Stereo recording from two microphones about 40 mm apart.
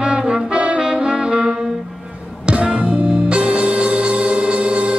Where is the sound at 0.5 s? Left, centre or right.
Right.